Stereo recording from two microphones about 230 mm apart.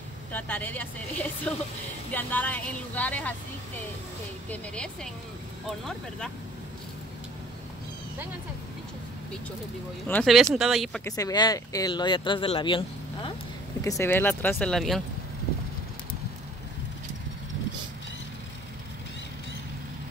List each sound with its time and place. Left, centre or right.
0.3 s speech: centre
4.5 s speech: centre
10.0 s speech: centre
11.1 s speech: centre